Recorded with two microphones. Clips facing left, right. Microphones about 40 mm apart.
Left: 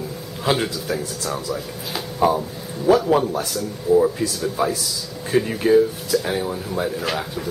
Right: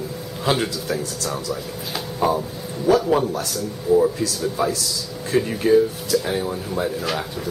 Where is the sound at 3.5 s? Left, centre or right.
Centre.